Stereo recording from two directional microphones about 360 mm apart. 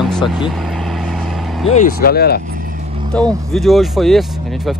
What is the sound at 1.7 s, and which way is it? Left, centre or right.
Speech, left.